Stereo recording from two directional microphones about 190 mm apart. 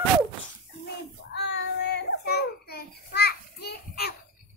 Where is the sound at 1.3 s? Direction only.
60° left (ahead or behind).